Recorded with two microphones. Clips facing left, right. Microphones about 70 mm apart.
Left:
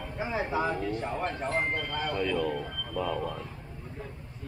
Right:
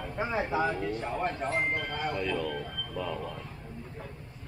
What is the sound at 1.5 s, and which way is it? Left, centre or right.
Speech, centre.